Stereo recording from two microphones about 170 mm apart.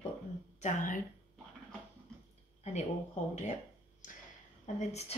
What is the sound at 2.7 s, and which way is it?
Speech, 40° left (ahead or behind).